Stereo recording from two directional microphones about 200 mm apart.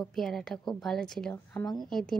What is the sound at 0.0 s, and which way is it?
A woman's voice, centre (ahead or behind).